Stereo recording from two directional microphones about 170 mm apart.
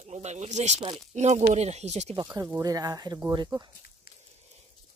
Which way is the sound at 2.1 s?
20° right (ahead or behind).